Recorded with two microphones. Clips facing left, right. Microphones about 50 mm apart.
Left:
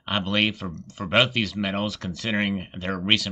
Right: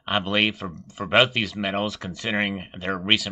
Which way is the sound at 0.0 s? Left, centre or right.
Centre.